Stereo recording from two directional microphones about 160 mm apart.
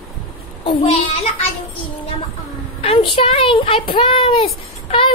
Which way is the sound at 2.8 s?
35° left (ahead or behind).